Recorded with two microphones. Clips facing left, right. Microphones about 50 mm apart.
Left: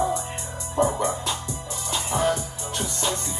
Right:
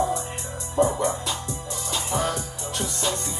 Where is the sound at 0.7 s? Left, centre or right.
Left.